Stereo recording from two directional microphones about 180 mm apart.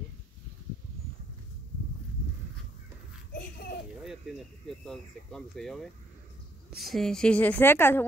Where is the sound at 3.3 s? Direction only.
65° left (ahead or behind).